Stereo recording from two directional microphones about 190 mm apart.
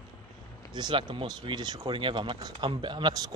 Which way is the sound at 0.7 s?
25° right (ahead or behind).